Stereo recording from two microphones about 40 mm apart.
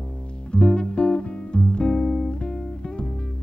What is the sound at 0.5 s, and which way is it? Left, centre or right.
Guitar, left.